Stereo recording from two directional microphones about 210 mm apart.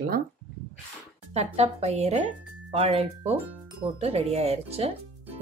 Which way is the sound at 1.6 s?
30° right (ahead or behind).